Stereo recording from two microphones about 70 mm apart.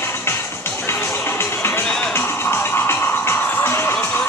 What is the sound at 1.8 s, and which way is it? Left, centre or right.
Music, centre.